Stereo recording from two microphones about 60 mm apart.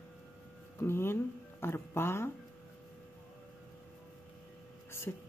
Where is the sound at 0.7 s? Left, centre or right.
Left.